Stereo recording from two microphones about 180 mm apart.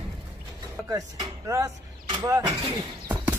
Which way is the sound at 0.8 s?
20° right (ahead or behind).